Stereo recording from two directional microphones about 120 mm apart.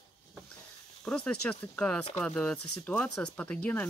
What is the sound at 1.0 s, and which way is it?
Speech, 10° left (ahead or behind).